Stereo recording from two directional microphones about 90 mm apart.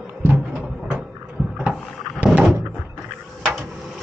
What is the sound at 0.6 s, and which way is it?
Cupboard open or close, centre (ahead or behind).